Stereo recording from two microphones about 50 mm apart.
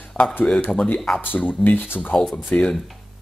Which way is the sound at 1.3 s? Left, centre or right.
Left.